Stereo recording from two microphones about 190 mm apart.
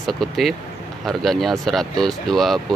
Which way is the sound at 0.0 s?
Centre (ahead or behind).